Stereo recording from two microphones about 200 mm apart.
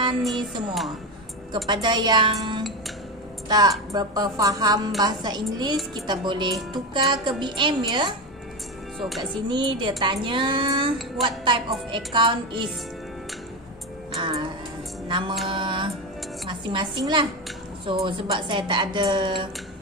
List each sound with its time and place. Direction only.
0.1 s music: centre (ahead or behind)
1.5 s a woman's voice: 20° right (ahead or behind)
9.5 s a woman's voice: 25° right (ahead or behind)
14.1 s music: 25° right (ahead or behind)
15.4 s a woman's voice: 25° right (ahead or behind)